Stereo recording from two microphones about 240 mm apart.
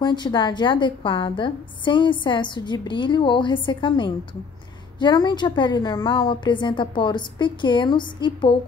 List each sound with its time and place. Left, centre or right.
0.0 s a woman's voice: centre